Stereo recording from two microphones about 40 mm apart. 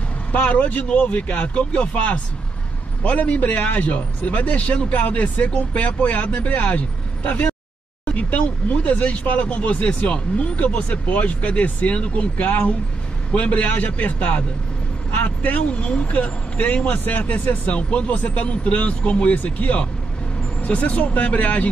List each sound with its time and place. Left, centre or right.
0.3 s speech: left
8.1 s speech: left
12.4 s speech: left
15.7 s speech: left